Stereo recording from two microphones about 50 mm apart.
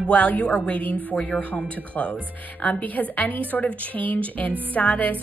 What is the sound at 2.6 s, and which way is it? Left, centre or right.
A woman's voice, left.